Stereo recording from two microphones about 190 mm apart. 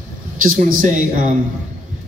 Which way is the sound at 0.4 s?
45° right (ahead or behind).